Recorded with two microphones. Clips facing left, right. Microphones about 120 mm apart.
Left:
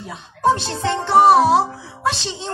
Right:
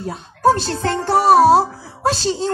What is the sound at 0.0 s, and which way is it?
A woman's voice, 40° right (ahead or behind).